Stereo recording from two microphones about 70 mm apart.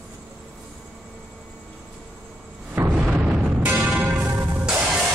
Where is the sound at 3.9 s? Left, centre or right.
Right.